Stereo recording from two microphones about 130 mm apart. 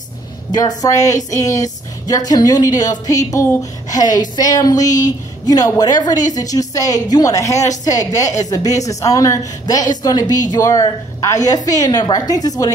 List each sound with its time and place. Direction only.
0.5 s a woman's voice: 30° left (ahead or behind)